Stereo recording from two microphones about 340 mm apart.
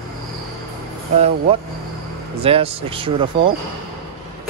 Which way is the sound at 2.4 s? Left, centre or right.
Centre.